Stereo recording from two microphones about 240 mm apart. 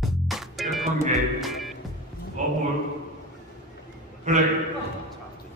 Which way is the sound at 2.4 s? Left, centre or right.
Right.